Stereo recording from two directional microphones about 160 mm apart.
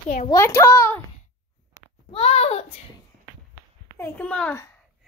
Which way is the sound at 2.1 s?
40° left (ahead or behind).